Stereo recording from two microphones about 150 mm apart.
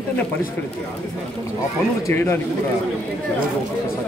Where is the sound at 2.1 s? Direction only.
15° left (ahead or behind).